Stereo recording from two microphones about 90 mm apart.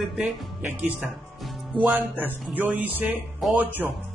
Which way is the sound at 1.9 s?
20° right (ahead or behind).